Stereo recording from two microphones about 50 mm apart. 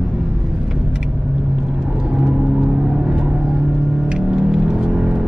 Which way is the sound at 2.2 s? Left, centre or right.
Centre.